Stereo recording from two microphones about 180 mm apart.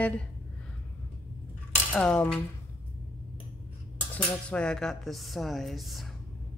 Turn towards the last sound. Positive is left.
turn(degrees=0)  # may be behind; listen again after turning